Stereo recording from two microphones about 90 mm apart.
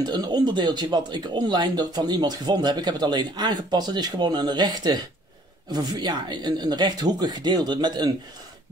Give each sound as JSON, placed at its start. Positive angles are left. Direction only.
{"t": 0.0, "sound": "speech", "side_deg": -50}